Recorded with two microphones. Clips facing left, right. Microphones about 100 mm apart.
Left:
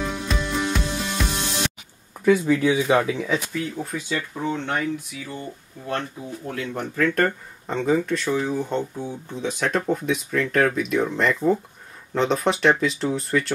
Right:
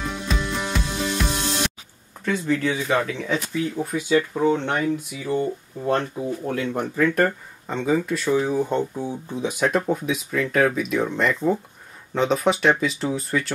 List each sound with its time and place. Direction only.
0.3 s music: centre (ahead or behind)
2.2 s speech: 10° left (ahead or behind)
3.7 s speech: 15° right (ahead or behind)
6.5 s speech: 15° right (ahead or behind)